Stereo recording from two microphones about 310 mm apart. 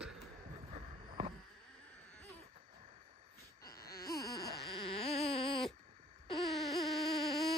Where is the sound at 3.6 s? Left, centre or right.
Left.